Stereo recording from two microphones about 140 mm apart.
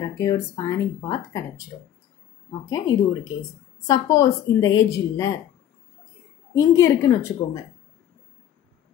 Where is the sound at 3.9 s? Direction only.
25° left (ahead or behind).